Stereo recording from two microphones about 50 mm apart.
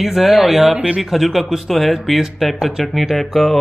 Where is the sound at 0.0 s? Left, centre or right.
Centre.